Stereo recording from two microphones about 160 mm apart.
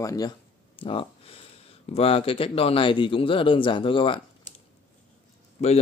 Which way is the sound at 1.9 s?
35° left (ahead or behind).